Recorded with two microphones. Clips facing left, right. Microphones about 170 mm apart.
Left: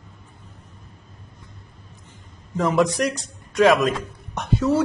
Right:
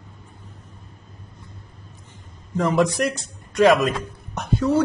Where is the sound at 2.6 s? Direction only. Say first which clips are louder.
Even; centre (ahead or behind).